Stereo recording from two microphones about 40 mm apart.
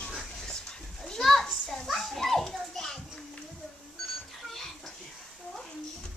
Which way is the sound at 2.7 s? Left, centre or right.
Centre.